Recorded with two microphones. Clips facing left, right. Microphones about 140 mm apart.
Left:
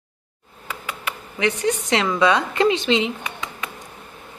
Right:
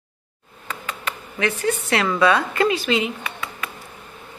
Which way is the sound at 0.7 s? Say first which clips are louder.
Even; 10° left (ahead or behind).